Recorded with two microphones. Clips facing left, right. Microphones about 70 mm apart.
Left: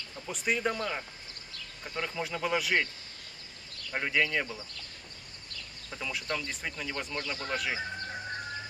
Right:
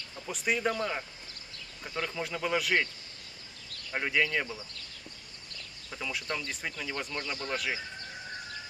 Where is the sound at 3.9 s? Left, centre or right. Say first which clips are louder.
Even; centre.